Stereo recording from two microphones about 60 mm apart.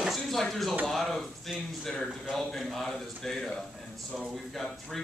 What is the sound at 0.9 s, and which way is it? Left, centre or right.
A man's voice, centre.